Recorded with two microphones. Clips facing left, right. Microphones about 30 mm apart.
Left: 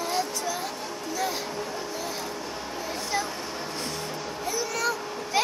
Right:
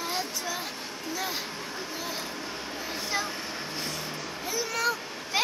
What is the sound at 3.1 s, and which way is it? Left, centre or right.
Vehicle, centre.